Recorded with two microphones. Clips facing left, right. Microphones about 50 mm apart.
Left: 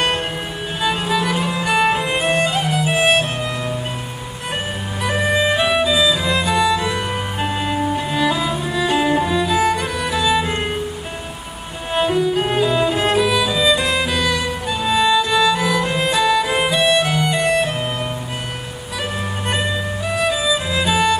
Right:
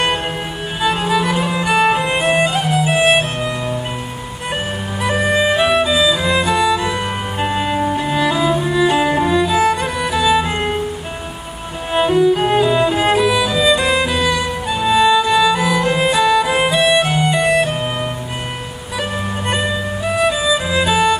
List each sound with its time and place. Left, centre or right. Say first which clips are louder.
0.7 s music: right 3 dB; centre
5.0 s music: right 2 dB; centre
11.9 s music: right 4 dB; centre
20.1 s music: right 3 dB; centre